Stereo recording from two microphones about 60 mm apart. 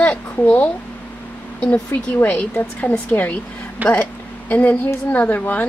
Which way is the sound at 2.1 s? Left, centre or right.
Left.